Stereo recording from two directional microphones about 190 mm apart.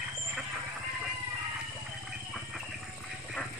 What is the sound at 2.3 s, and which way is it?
Clip-clop, centre (ahead or behind).